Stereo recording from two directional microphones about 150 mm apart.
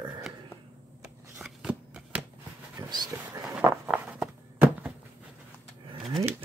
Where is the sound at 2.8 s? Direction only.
20° right (ahead or behind).